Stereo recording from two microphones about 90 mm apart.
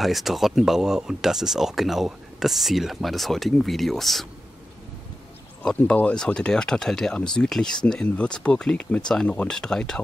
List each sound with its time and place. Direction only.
0.0 s speech: centre (ahead or behind)
5.6 s speech: 10° left (ahead or behind)